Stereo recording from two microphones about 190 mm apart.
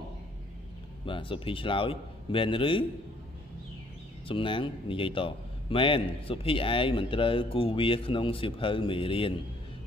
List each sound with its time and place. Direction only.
1.0 s a man's voice: 25° left (ahead or behind)
4.3 s a man's voice: 25° left (ahead or behind)